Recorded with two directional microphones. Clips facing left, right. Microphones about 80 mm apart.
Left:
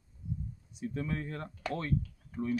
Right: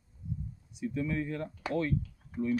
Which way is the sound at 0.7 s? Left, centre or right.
Left.